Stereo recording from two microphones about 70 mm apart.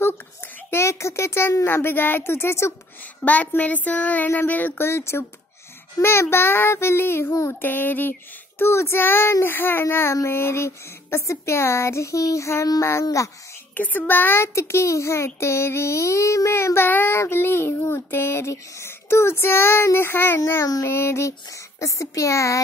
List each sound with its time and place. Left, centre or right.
0.7 s a child's voice: left
3.3 s a child's voice: left
13.7 s a child's voice: left
20.6 s speech: left
20.9 s speech: left